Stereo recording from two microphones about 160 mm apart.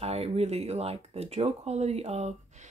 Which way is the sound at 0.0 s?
40° right (ahead or behind).